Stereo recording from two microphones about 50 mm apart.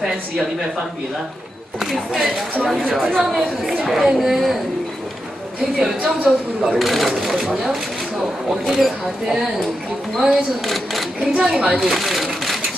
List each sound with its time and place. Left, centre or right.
1.8 s speech: centre
5.8 s speech: centre
11.3 s a woman's voice: centre
11.9 s a sound: centre